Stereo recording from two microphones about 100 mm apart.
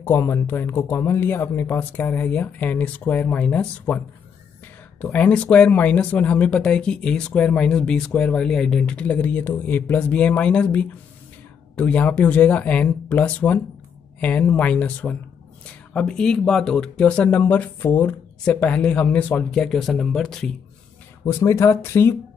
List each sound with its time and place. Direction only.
0.0 s speech: 25° left (ahead or behind)
5.0 s speech: 15° left (ahead or behind)
21.3 s speech: 25° left (ahead or behind)